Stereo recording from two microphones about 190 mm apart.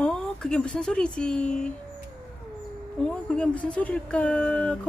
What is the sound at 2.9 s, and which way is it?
A woman's voice, 5° left (ahead or behind).